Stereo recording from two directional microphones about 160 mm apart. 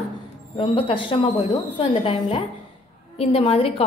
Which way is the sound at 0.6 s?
35° left (ahead or behind).